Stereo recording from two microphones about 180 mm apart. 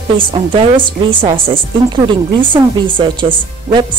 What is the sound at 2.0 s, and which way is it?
Speech, 25° right (ahead or behind).